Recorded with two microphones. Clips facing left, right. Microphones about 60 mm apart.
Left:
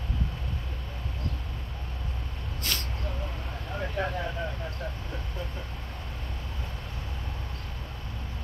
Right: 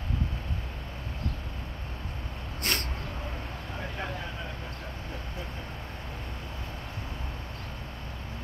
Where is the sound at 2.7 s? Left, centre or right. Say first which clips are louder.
Right 3 dB; right.